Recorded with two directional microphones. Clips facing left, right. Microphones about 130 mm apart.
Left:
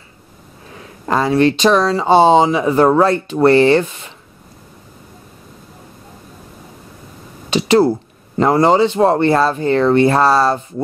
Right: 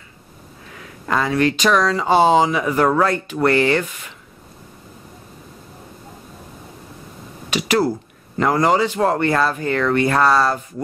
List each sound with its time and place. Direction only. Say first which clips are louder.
0.7 s speech: left 4 dB; 30° left (ahead or behind)
7.4 s a sound: left 6 dB; 30° left (ahead or behind)
8.4 s speech: left 5 dB; 30° left (ahead or behind)